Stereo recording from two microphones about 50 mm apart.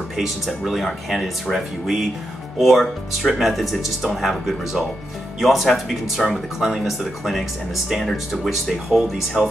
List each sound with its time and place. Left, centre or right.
0.5 s speech: centre
6.6 s speech: centre